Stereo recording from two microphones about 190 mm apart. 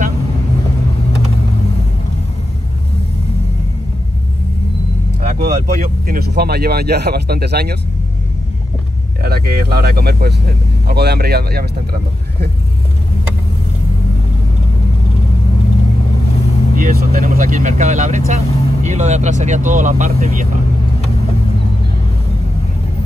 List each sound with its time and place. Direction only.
5.2 s speech: 50° right (ahead or behind)
9.2 s speech: 55° right (ahead or behind)
16.7 s speech: 50° right (ahead or behind)